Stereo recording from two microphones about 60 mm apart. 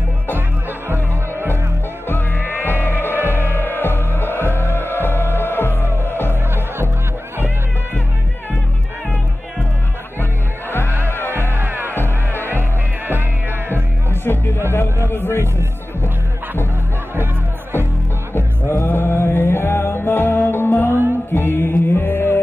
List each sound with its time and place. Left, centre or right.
0.8 s music: right
2.0 s music: left
3.2 s music: right
3.4 s music: left
11.2 s music: right
14.2 s music: left
18.3 s music: left